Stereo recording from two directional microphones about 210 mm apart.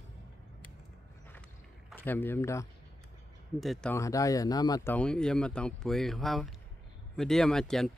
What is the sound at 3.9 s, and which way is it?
Speech, 15° left (ahead or behind).